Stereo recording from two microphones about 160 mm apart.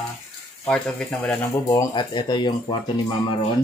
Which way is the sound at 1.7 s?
25° left (ahead or behind).